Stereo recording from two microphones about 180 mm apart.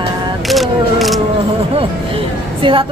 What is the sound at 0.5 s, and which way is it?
Single-lens reflex camera, centre (ahead or behind).